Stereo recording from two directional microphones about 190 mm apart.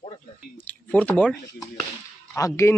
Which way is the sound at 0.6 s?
10° left (ahead or behind).